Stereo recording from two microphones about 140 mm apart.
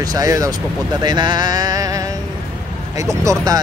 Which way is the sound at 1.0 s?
30° right (ahead or behind).